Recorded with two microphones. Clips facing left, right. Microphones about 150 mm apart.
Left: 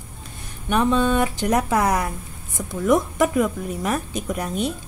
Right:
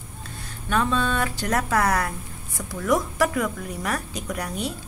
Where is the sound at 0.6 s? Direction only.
15° left (ahead or behind).